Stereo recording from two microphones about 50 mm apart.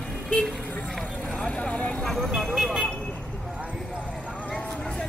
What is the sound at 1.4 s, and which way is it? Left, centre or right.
Vehicle, left.